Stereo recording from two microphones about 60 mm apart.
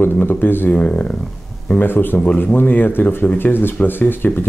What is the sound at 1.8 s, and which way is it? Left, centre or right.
Speech, left.